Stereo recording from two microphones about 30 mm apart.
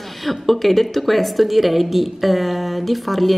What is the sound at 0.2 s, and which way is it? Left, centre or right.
A woman's voice, centre.